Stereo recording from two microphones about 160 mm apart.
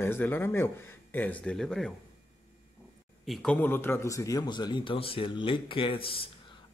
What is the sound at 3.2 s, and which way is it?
A man's voice, 5° left (ahead or behind).